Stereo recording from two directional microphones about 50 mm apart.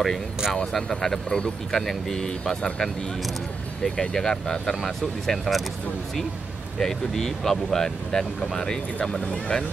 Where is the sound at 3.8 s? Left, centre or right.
Centre.